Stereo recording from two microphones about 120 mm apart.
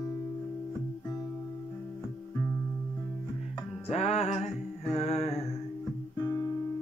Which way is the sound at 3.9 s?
60° left (ahead or behind).